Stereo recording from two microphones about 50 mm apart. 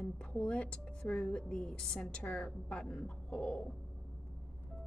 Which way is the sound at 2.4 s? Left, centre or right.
Centre.